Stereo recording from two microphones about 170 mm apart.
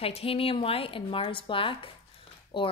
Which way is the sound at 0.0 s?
35° left (ahead or behind).